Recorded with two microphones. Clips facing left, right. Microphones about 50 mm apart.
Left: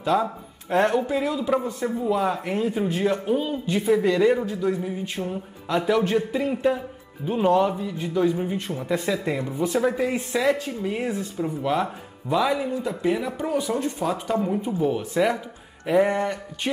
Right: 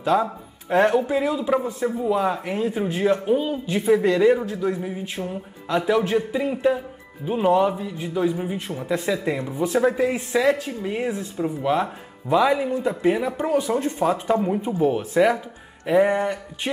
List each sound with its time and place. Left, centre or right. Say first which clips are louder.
0.2 s speech: right 1 dB; centre
1.6 s speech: right 2 dB; right
2.0 s speech: even; centre
5.2 s speech: even; centre
9.4 s speech: right 2 dB; centre